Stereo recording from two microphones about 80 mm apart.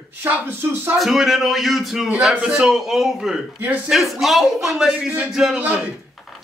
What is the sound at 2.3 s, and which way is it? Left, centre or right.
A man's voice, centre.